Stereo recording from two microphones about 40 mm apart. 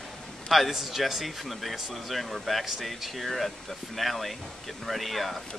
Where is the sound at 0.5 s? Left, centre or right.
Centre.